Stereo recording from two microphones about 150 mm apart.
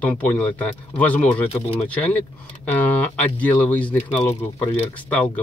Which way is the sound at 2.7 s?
10° left (ahead or behind).